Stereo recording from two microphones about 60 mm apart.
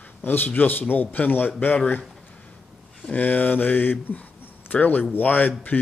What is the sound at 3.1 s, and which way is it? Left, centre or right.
A man's voice, left.